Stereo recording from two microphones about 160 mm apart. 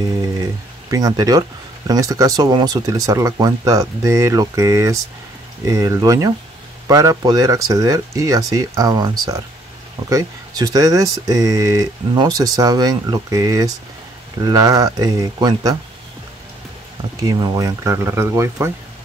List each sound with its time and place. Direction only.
0.8 s speech: 20° right (ahead or behind)
17.2 s speech: 25° right (ahead or behind)